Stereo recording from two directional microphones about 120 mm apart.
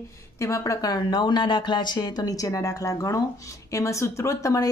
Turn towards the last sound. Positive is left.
turn(degrees=25)  # may be behind; listen again after turning